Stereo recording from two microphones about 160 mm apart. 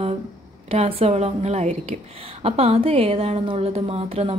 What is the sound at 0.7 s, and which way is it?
A woman's voice, 40° right (ahead or behind).